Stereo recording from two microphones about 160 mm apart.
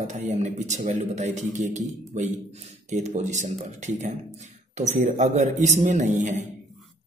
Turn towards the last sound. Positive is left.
turn(degrees=-50)  # may be behind; listen again after turning